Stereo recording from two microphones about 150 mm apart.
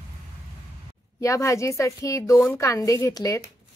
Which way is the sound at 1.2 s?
20° left (ahead or behind).